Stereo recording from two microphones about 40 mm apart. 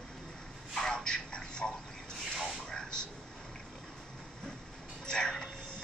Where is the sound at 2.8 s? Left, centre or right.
Left.